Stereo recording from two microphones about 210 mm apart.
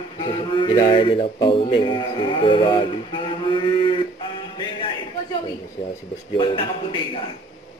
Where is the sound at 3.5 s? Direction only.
25° left (ahead or behind).